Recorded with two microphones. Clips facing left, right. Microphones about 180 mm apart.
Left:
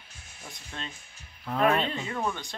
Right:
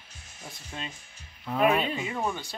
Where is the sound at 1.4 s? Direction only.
5° right (ahead or behind).